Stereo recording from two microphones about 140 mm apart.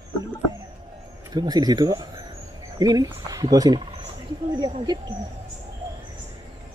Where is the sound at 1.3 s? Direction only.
30° right (ahead or behind).